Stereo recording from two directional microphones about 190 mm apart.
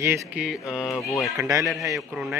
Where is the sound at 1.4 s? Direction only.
15° right (ahead or behind).